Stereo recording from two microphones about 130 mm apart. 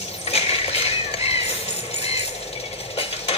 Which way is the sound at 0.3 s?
50° left (ahead or behind).